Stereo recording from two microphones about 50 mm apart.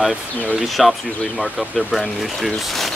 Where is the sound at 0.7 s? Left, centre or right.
Centre.